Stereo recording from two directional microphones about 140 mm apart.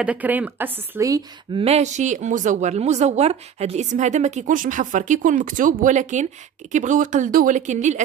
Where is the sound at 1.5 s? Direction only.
50° right (ahead or behind).